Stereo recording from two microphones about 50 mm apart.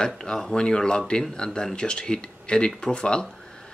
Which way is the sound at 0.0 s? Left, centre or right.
Centre.